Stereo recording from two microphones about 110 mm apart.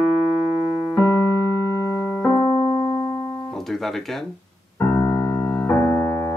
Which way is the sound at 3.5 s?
Centre (ahead or behind).